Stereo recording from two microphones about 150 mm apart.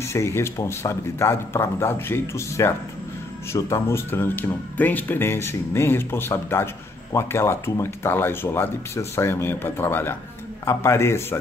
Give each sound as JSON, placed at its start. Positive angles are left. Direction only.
{"t": 0.0, "sound": "speech", "side_deg": 20}